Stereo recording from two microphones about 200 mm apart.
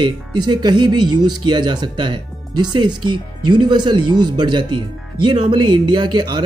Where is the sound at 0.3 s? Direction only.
20° right (ahead or behind).